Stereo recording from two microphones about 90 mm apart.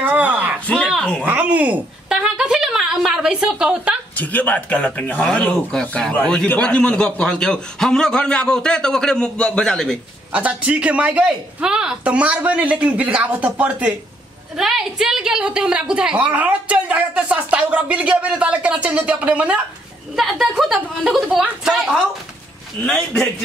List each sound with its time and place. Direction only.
0.0 s a sound: 15° right (ahead or behind)
0.7 s a sound: 15° left (ahead or behind)
1.2 s a woman's voice: 15° right (ahead or behind)
4.2 s speech: 15° left (ahead or behind)
10.3 s a woman's voice: 15° right (ahead or behind)
14.6 s a woman's voice: 5° right (ahead or behind)
20.2 s a woman's voice: centre (ahead or behind)
22.8 s speech: 10° left (ahead or behind)